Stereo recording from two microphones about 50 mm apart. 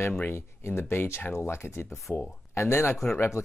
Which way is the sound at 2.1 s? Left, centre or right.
Left.